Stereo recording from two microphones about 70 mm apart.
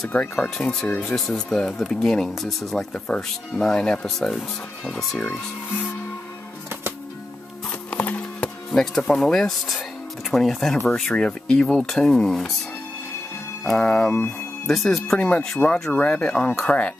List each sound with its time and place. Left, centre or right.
0.1 s speech: centre
5.2 s speech: left
7.9 s music: centre
8.6 s speech: centre
13.7 s speech: centre
15.1 s speech: left